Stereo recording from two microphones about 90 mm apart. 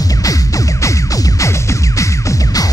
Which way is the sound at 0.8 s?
35° left (ahead or behind).